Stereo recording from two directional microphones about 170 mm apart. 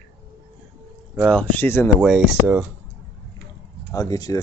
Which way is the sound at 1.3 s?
10° left (ahead or behind).